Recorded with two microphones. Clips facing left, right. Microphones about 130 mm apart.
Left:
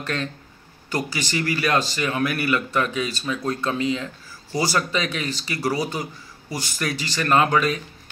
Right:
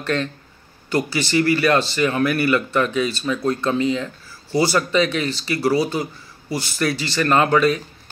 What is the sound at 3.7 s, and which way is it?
Speech, 35° right (ahead or behind).